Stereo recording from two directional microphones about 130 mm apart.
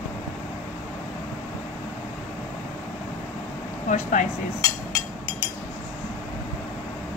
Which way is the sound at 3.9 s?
75° left (ahead or behind).